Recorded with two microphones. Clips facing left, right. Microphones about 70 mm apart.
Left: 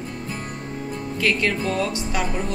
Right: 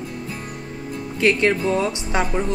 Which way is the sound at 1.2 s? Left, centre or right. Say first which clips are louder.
Right 5 dB; right.